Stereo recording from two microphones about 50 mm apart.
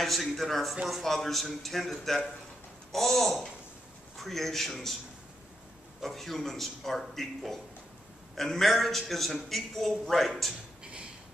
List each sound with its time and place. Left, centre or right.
0.0 s a man's voice: centre
5.9 s a man's voice: centre
10.8 s a sound: right